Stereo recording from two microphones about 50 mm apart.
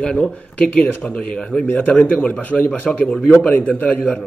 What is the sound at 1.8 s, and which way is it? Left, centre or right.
A man's voice, left.